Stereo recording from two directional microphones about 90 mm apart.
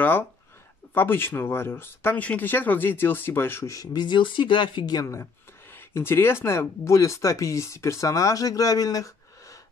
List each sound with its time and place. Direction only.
0.9 s speech: 25° left (ahead or behind)
3.7 s speech: 45° left (ahead or behind); by 4.9 s 65° left (ahead or behind)
4.9 s speech: 35° left (ahead or behind)